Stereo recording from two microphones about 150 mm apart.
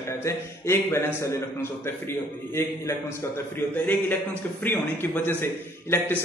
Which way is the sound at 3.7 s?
10° left (ahead or behind).